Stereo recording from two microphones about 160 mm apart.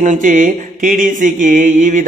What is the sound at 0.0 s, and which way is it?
Mantra, 55° right (ahead or behind).